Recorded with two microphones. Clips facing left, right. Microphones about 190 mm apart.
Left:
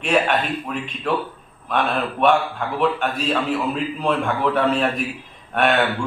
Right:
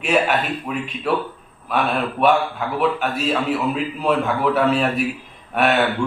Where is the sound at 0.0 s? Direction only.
5° right (ahead or behind).